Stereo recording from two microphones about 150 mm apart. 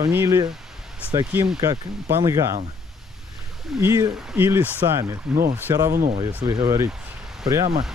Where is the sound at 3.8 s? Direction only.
20° right (ahead or behind).